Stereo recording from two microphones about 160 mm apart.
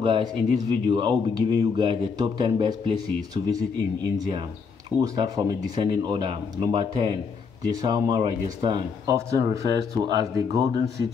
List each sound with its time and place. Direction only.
0.0 s speech: 30° right (ahead or behind)